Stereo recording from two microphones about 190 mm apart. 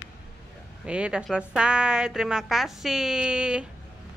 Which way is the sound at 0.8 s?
5° right (ahead or behind).